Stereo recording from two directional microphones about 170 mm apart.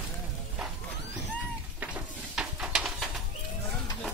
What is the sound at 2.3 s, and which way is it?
Pigeon, 5° right (ahead or behind).